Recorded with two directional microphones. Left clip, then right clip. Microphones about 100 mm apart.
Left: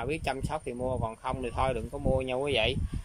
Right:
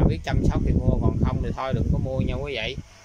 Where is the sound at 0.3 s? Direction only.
15° left (ahead or behind).